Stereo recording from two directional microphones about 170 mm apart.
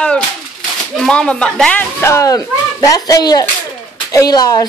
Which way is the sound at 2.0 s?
15° left (ahead or behind).